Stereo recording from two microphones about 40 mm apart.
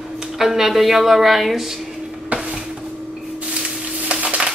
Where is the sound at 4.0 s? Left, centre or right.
Right.